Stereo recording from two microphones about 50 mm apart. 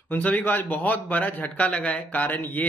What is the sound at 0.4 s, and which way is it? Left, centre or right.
A man's voice, left.